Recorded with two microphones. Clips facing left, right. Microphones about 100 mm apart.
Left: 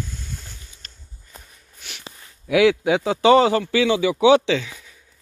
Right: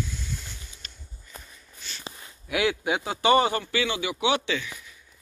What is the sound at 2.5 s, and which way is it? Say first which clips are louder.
A man's voice: left 9 dB; 90° left.